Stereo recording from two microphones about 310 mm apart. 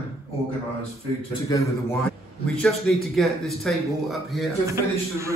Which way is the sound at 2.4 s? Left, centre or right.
Centre.